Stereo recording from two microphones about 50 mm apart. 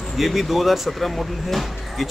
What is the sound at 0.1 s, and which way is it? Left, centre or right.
Speech, centre.